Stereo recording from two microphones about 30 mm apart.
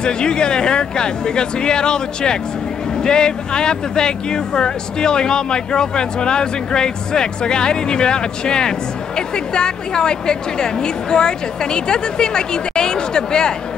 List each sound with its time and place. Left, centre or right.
0.0 s speech: left